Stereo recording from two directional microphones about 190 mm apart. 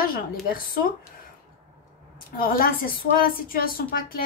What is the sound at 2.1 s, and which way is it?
A woman's voice, 50° left (ahead or behind).